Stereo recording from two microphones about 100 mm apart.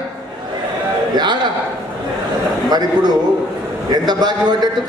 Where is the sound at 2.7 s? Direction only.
40° right (ahead or behind).